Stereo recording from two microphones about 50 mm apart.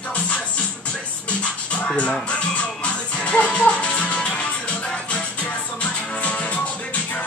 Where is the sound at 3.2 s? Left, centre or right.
Left.